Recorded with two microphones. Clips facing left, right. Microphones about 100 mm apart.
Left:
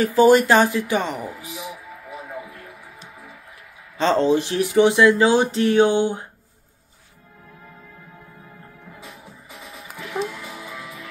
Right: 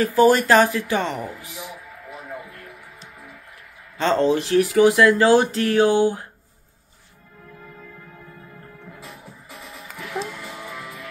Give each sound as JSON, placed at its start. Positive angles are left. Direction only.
{"t": 0.0, "sound": "speech", "side_deg": 20}
{"t": 4.0, "sound": "speech", "side_deg": 20}
{"t": 9.8, "sound": "music", "side_deg": 10}